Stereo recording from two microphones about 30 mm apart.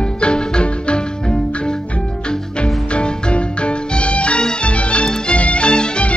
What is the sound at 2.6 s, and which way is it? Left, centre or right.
Music, left.